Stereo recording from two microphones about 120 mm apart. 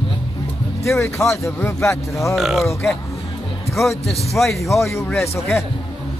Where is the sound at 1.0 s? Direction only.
5° left (ahead or behind).